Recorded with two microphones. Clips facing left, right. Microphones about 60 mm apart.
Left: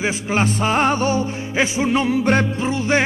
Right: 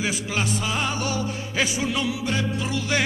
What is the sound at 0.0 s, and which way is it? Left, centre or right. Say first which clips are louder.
Music: left 6 dB; left.